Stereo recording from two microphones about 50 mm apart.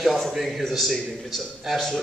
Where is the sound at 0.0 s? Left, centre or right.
Centre.